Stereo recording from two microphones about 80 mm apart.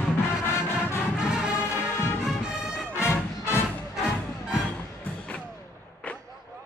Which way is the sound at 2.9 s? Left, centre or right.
Left.